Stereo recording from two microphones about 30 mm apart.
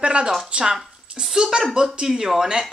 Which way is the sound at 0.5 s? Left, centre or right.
Right.